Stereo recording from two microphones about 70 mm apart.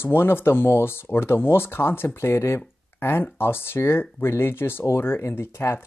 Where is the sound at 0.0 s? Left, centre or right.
Left.